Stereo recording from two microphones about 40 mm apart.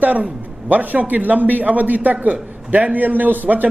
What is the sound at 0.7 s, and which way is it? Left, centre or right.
A man's voice, right.